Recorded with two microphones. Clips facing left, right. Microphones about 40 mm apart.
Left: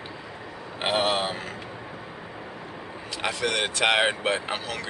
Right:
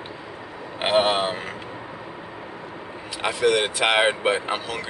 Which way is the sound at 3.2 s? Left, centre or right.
Centre.